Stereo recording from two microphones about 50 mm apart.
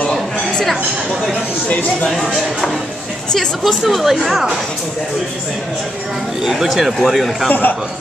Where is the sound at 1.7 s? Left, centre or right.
Left.